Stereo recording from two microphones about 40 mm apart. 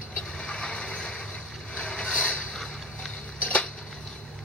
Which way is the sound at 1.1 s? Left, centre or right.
Left.